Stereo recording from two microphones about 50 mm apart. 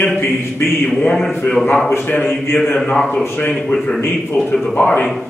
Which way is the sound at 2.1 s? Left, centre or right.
Left.